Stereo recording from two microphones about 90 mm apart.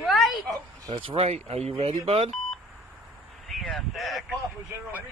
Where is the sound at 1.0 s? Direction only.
90° right.